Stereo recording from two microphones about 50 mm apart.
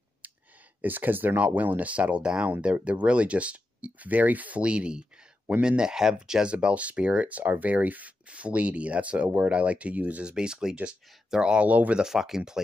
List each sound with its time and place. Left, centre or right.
0.2 s a sound: right
0.7 s speech: right
10.3 s speech: centre; by 12.0 s right
12.0 s speech: centre